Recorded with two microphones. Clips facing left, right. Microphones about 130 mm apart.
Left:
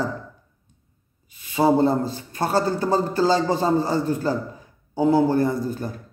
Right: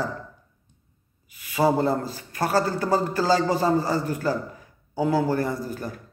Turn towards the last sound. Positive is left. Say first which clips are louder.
# left 4 dB
turn(degrees=25)  # may be behind; listen again after turning